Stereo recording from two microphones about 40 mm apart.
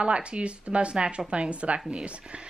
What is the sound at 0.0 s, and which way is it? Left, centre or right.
A woman's voice, right.